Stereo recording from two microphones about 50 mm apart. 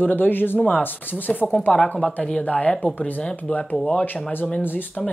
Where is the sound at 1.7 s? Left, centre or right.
Centre.